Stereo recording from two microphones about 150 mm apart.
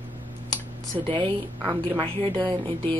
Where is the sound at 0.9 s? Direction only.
35° right (ahead or behind).